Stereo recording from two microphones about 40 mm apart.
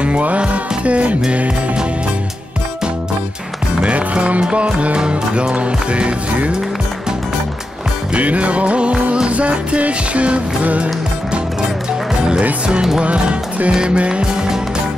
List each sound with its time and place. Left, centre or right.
0.4 s music: right
3.8 s music: right
8.1 s music: right
13.0 s music: right